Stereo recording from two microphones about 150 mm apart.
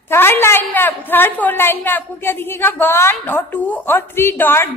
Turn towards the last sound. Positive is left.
turn(degrees=15)  # may be behind; listen again after turning